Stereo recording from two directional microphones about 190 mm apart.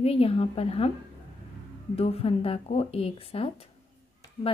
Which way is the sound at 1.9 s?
30° left (ahead or behind).